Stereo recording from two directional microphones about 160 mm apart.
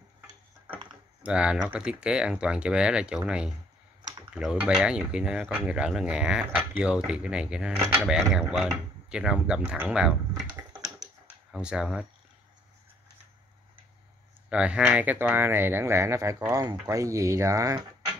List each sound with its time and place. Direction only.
1.2 s speech: 5° right (ahead or behind)
11.5 s speech: 5° right (ahead or behind)
14.5 s speech: 5° right (ahead or behind)